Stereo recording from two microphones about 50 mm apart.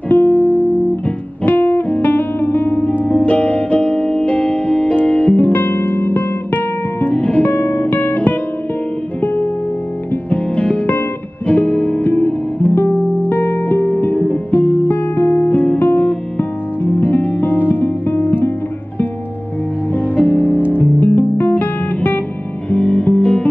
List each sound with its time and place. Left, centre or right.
0.1 s music: left
1.0 s music: left
15.1 s music: left
15.5 s music: left
19.9 s music: left
20.7 s guitar: left
22.7 s music: left